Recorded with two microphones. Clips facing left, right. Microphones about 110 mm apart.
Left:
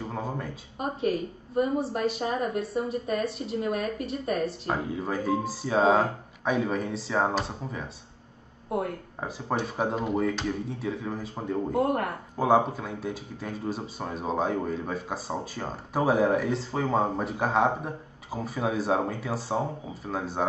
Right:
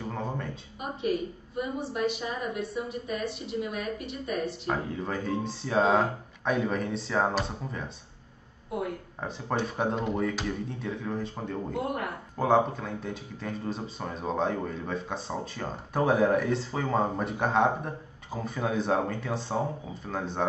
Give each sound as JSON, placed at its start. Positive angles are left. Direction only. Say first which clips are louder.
{"t": 0.0, "sound": "a sound", "louder": "left 1 dB", "side_deg": 10}
{"t": 0.7, "sound": "a woman's voice", "louder": "left 2 dB", "side_deg": 40}
{"t": 4.6, "sound": "speech", "louder": "left 1 dB", "side_deg": 5}
{"t": 8.6, "sound": "speech", "louder": "left 3 dB", "side_deg": 45}
{"t": 9.2, "sound": "speech", "louder": "left 1 dB", "side_deg": 5}
{"t": 11.7, "sound": "speech", "louder": "left 7 dB", "side_deg": 45}
{"t": 12.4, "sound": "speech", "louder": "left 1 dB", "side_deg": 5}